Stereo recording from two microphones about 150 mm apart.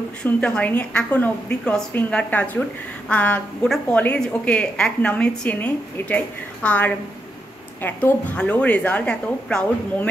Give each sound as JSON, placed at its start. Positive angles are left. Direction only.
{"t": 0.2, "sound": "a woman's voice", "side_deg": 10}